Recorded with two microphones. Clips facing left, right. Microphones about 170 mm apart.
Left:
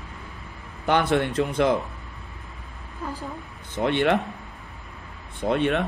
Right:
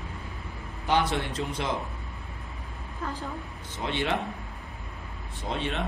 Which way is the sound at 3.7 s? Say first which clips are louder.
Left 8 dB; 60° left (ahead or behind).